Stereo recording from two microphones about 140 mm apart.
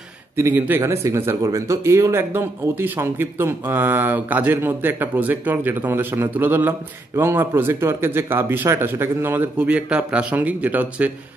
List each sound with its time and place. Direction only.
0.4 s speech: 15° right (ahead or behind)